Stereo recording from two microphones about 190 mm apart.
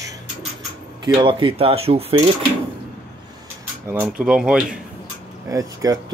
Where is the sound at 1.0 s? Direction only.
25° right (ahead or behind).